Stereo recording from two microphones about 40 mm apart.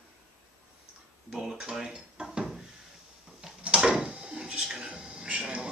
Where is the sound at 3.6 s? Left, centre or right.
Right.